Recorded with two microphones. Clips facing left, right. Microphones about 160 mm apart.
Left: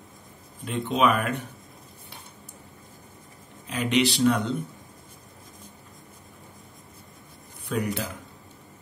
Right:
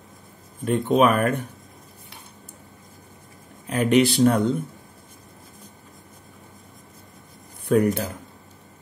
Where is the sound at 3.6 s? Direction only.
50° right (ahead or behind).